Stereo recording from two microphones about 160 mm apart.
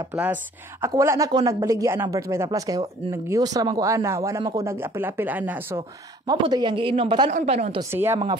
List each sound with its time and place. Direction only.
0.1 s a woman's voice: 10° right (ahead or behind)
5.8 s speech: 30° right (ahead or behind)
7.2 s speech: 45° right (ahead or behind)
7.9 s speech: 15° right (ahead or behind)